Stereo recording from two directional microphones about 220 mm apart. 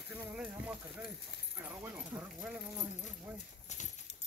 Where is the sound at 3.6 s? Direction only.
35° left (ahead or behind).